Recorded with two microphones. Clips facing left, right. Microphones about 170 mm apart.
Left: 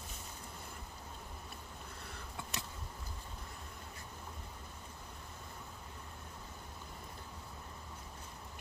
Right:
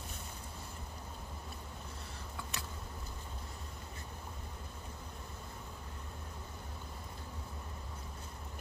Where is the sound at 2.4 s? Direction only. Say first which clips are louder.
Even; 25° left (ahead or behind).